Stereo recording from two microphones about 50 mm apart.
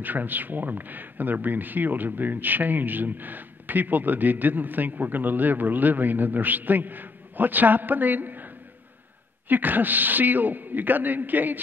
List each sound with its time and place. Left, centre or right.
0.0 s speech: right
9.5 s speech: right